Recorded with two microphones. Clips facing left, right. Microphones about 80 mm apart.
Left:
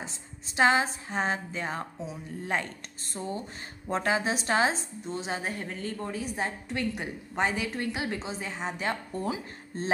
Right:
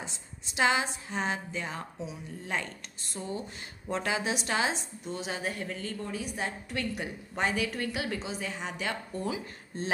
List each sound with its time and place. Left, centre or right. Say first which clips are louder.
0.0 s a woman's voice: left 1 dB; left